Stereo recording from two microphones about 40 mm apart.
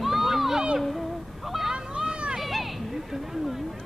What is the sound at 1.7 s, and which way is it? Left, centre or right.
Vehicle, centre.